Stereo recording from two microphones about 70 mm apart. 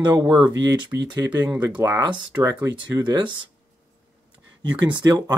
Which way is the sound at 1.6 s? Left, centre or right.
Right.